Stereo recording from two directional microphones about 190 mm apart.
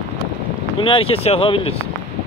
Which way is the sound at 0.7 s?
30° left (ahead or behind).